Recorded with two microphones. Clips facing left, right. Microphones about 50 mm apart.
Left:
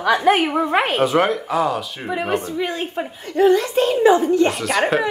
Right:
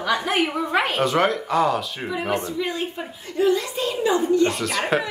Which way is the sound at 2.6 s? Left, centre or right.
Left.